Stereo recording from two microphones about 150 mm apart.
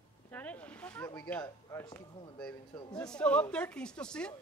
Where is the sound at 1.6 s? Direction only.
20° left (ahead or behind).